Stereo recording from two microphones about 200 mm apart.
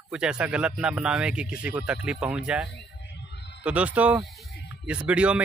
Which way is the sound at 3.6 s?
5° right (ahead or behind).